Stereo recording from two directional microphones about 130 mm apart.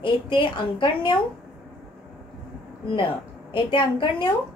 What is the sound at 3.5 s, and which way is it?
Speech, 40° left (ahead or behind).